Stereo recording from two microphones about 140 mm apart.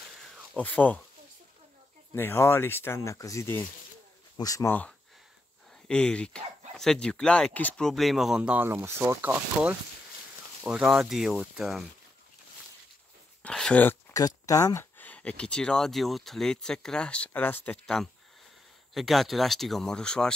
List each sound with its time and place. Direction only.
0.3 s a sound: 10° left (ahead or behind)
2.1 s speech: 15° left (ahead or behind)
5.9 s speech: 5° left (ahead or behind)
13.4 s dog: 5° left (ahead or behind)
14.1 s speech: 25° left (ahead or behind); by 20.3 s 5° left (ahead or behind)